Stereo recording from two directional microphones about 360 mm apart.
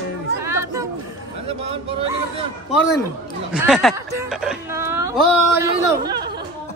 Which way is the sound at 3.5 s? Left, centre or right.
Centre.